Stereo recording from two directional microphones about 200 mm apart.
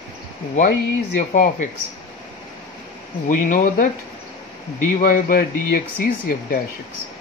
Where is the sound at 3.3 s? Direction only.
40° left (ahead or behind).